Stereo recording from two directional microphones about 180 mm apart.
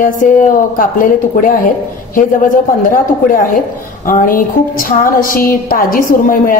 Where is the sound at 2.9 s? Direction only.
50° left (ahead or behind).